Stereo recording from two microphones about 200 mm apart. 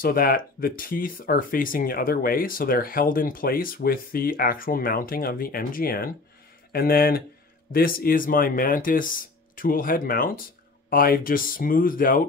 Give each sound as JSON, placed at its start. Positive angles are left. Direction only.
{"t": 0.0, "sound": "speech", "side_deg": 45}